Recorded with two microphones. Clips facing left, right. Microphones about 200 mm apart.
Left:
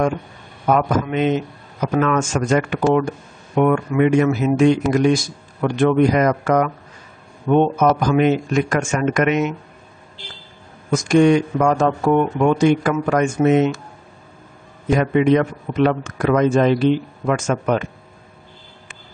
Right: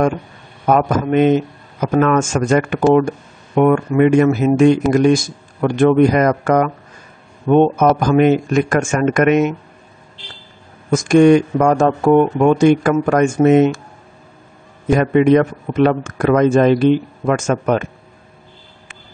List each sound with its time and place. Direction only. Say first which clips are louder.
0.7 s a man's voice: right 3 dB; 45° right (ahead or behind)
10.9 s a man's voice: right 4 dB; 50° right (ahead or behind)
14.9 s a man's voice: right 3 dB; 50° right (ahead or behind)